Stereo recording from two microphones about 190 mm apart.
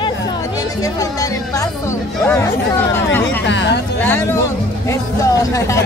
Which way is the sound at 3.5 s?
70° left (ahead or behind).